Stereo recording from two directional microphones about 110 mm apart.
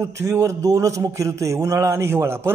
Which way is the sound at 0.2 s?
30° right (ahead or behind).